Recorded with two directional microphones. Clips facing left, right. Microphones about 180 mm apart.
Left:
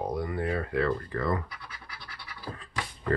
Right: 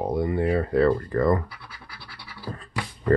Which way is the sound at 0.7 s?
35° right (ahead or behind).